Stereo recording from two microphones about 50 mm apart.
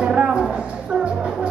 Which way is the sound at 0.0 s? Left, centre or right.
Centre.